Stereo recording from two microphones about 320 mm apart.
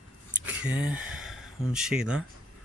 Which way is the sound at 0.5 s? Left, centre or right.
Centre.